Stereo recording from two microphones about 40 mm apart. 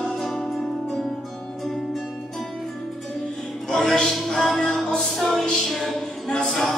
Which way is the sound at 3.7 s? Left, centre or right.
Centre.